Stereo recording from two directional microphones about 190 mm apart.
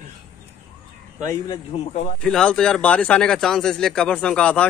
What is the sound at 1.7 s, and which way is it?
Speech, 30° left (ahead or behind).